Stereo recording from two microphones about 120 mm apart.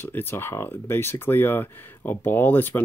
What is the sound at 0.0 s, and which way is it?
Speech, 20° left (ahead or behind).